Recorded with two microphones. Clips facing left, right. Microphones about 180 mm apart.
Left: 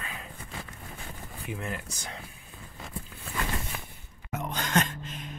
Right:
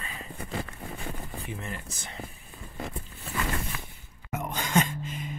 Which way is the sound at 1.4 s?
Centre (ahead or behind).